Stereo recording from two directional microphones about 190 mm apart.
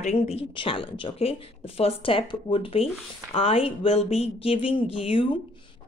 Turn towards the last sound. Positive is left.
turn(degrees=30)  # may be behind; listen again after turning